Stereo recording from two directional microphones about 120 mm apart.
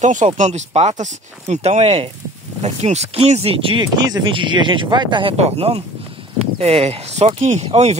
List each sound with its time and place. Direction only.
0.0 s speech: 90° right
0.4 s speech: 75° right (ahead or behind); by 3.8 s 45° right (ahead or behind)
3.8 s speech: 35° right (ahead or behind)
5.4 s speech: 55° right (ahead or behind)